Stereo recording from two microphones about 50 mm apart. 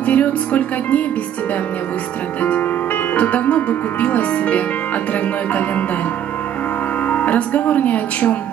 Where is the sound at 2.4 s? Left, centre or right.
Left.